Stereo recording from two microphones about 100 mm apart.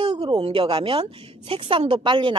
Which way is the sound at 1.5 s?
65° right (ahead or behind).